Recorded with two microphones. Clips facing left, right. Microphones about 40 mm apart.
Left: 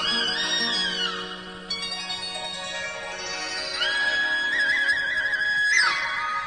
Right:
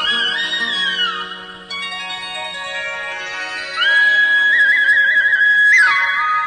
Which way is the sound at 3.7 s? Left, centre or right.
Right.